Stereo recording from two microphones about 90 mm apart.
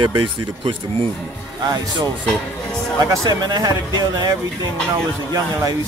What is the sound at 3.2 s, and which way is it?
Speech, 50° right (ahead or behind).